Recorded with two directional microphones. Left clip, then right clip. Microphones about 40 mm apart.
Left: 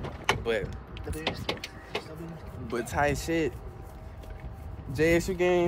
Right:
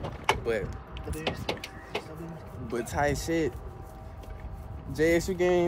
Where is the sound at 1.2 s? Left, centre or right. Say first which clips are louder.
Even; right.